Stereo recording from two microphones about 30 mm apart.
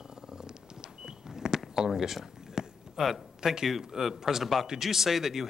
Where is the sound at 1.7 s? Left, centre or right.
Centre.